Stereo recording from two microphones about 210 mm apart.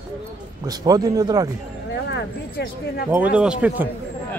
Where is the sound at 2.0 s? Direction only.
50° left (ahead or behind).